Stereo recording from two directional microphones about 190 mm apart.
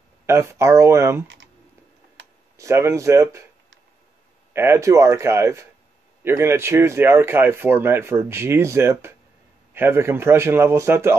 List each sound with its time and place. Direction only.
0.3 s speech: 15° right (ahead or behind)
1.2 s typing: 75° right (ahead or behind)
2.5 s speech: 15° right (ahead or behind)
4.6 s speech: 15° right (ahead or behind)